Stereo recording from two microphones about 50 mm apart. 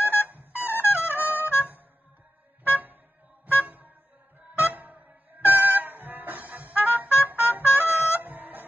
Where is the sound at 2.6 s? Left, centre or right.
Right.